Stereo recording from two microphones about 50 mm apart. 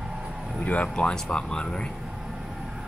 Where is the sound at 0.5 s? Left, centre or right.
Left.